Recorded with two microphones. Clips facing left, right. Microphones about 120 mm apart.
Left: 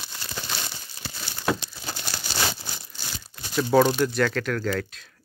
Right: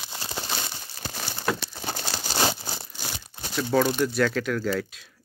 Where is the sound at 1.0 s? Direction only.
60° right (ahead or behind).